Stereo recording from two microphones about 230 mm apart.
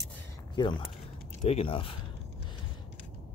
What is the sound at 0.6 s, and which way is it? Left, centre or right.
Speech, left.